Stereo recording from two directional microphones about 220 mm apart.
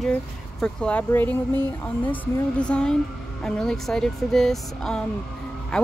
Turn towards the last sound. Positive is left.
turn(degrees=0)  # may be behind; listen again after turning